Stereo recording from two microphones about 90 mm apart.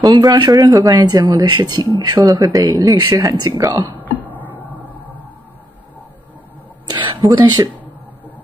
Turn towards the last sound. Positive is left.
turn(degrees=-50)  # may be behind; listen again after turning